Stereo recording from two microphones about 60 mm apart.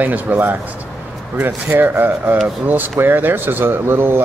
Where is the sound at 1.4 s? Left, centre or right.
Right.